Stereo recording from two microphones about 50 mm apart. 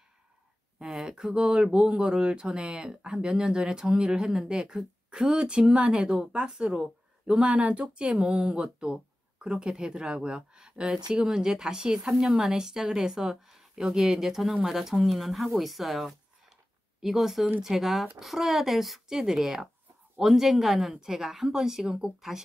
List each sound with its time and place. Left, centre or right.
0.7 s speech: centre
7.3 s speech: right; by 22.4 s centre